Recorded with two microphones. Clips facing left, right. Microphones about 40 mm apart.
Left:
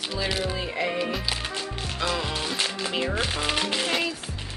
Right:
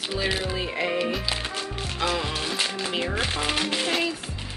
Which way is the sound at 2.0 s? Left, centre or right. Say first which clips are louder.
Right 1 dB; centre.